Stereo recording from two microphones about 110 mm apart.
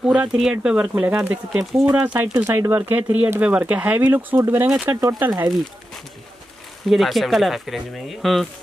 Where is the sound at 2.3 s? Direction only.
25° right (ahead or behind).